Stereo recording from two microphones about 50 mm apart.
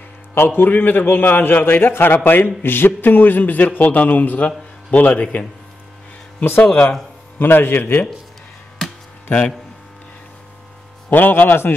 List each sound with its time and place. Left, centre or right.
0.3 s a man's voice: left
6.4 s a man's voice: left
6.7 s a man's voice: left
7.3 s a man's voice: left
11.1 s a man's voice: left